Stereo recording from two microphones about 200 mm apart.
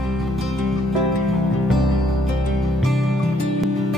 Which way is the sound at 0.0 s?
Centre (ahead or behind).